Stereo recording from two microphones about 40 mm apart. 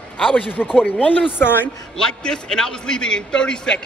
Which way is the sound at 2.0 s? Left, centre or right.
Centre.